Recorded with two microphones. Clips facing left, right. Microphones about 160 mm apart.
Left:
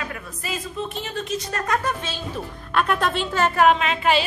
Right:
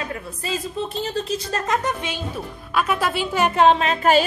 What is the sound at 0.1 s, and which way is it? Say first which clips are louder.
A woman's voice: right 4 dB; 30° right (ahead or behind).